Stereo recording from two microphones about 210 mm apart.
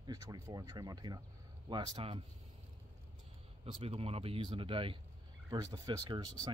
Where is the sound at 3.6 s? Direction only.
30° right (ahead or behind).